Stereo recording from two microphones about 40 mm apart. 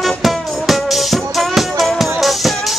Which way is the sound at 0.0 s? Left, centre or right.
Centre.